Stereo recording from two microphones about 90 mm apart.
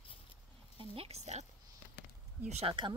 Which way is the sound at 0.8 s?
90° right.